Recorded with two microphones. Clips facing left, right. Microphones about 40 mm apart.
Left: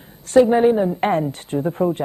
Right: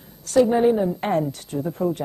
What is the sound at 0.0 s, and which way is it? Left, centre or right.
A woman's voice, left.